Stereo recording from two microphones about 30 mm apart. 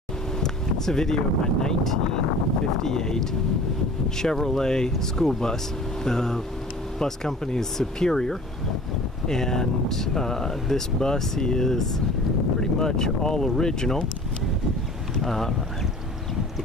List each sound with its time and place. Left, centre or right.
0.4 s speech: centre
15.2 s speech: centre